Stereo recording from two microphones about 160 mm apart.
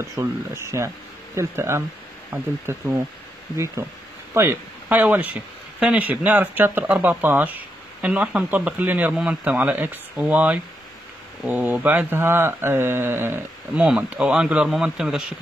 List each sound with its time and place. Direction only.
0.2 s speech: 15° right (ahead or behind)